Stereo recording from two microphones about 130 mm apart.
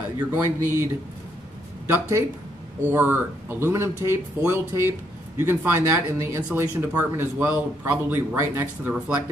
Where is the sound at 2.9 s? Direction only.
15° right (ahead or behind).